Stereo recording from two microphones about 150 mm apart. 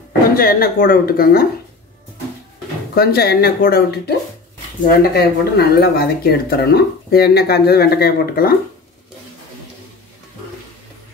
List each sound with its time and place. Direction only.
0.4 s speech: 75° left (ahead or behind)
2.9 s speech: 90° left